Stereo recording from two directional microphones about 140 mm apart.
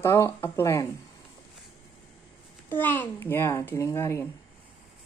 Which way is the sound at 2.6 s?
15° left (ahead or behind).